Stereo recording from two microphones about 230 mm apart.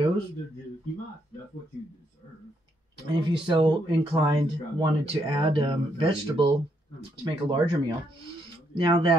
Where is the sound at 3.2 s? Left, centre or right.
Centre.